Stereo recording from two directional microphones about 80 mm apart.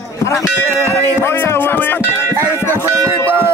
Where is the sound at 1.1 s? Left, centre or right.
Left.